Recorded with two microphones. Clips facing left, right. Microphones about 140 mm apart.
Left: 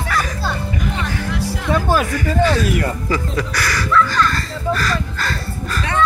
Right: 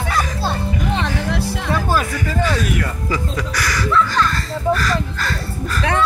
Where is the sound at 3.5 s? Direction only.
15° right (ahead or behind).